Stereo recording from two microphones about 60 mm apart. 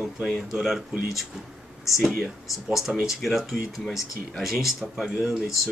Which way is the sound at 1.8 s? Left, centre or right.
Centre.